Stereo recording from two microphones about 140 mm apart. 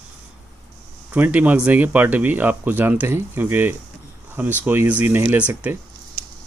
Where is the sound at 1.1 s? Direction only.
10° right (ahead or behind).